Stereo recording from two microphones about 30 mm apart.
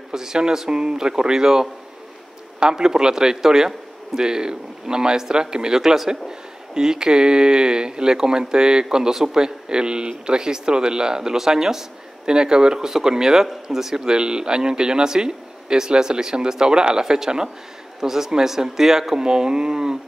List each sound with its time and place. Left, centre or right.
0.1 s speech: centre
2.7 s speech: right
14.1 s speech: right
19.2 s speech: right